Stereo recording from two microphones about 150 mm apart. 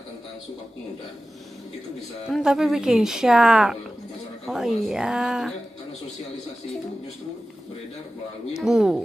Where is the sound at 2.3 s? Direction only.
5° right (ahead or behind).